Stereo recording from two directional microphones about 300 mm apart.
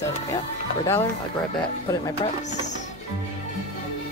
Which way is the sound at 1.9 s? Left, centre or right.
Centre.